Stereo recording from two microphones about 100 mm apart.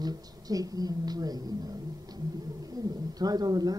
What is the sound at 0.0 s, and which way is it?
A woman's voice, 40° right (ahead or behind).